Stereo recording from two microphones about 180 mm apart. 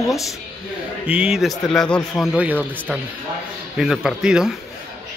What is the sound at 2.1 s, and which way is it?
Speech, 10° right (ahead or behind).